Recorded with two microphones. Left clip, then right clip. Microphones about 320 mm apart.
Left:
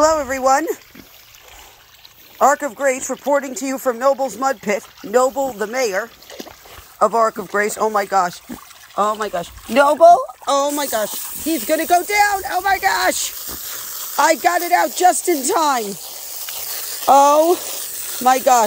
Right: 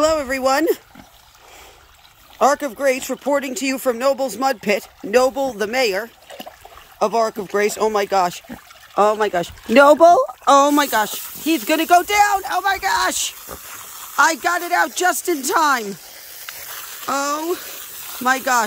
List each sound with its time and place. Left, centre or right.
0.0 s speech: centre
2.3 s speech: centre
5.2 s speech: centre
5.6 s speech: centre
7.0 s speech: centre
9.4 s speech: centre
13.4 s snake: centre
14.1 s speech: centre
15.8 s a sound: left
17.1 s speech: centre